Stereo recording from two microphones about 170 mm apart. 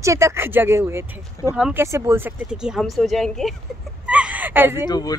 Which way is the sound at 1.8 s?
15° right (ahead or behind).